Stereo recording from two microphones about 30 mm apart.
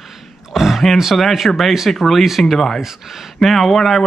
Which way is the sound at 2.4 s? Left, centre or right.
Centre.